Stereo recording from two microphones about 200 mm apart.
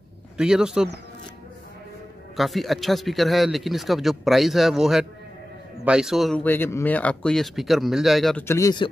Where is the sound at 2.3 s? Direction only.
Centre (ahead or behind).